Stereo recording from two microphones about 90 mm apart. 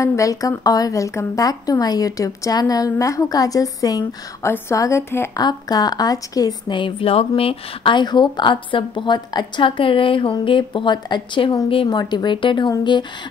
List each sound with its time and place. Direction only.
0.0 s speech: 40° left (ahead or behind)
4.4 s speech: 30° left (ahead or behind)
5.3 s a woman's voice: 50° left (ahead or behind)
6.7 s speech: 80° left; by 9.5 s 55° left (ahead or behind)
9.6 s speech: 75° left (ahead or behind)